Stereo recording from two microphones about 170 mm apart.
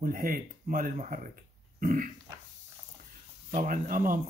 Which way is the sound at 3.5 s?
55° right (ahead or behind).